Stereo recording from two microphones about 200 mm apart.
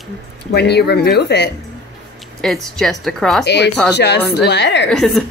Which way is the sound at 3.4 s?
55° left (ahead or behind).